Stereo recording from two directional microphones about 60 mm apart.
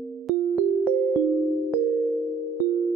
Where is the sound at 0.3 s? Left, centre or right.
Centre.